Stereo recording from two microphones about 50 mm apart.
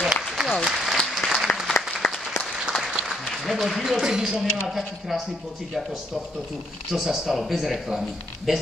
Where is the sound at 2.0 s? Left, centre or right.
Left.